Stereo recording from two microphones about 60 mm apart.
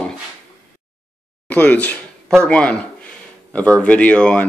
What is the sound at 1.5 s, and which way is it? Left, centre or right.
Speech, left.